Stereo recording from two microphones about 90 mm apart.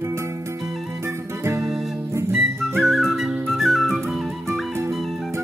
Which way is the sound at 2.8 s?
5° right (ahead or behind).